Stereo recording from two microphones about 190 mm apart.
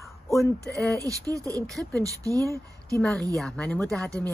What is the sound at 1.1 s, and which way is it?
Speech, 15° right (ahead or behind).